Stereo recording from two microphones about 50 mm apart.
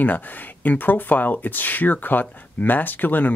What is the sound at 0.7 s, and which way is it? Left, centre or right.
Speech, left.